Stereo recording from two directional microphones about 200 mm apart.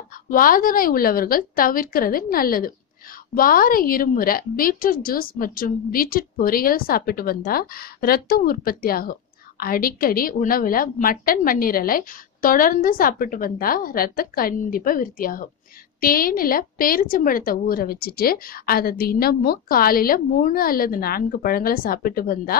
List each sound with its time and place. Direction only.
0.3 s a woman's voice: 45° left (ahead or behind)